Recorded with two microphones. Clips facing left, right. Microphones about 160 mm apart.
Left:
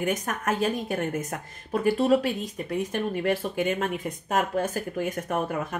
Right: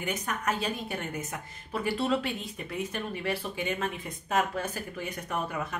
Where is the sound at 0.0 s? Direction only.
45° left (ahead or behind).